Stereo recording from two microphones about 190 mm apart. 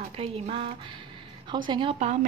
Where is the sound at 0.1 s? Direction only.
30° right (ahead or behind).